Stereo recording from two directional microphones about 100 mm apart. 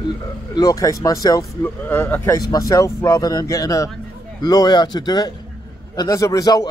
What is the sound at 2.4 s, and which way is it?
A man's voice, 35° left (ahead or behind).